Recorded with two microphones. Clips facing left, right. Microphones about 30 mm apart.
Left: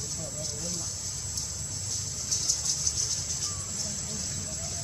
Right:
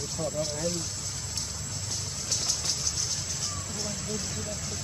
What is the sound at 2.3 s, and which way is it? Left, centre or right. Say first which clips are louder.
Vehicle: right 1 dB; right.